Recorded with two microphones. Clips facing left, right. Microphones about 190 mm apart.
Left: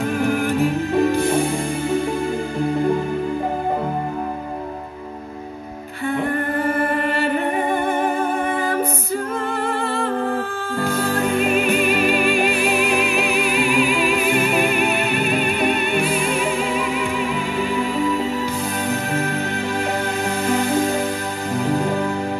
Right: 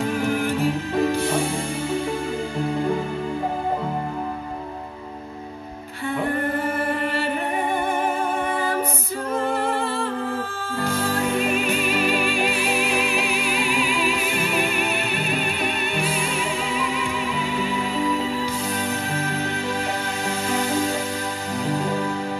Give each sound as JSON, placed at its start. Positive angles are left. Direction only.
{"t": 10.9, "sound": "music", "side_deg": 60}
{"t": 20.4, "sound": "music", "side_deg": 60}